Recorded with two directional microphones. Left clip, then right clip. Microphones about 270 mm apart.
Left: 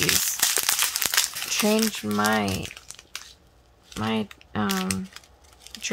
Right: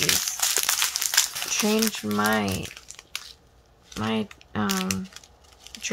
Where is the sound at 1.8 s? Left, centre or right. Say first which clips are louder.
Even; centre.